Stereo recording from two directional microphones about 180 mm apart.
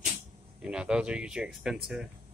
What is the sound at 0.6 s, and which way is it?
Speech, 5° right (ahead or behind).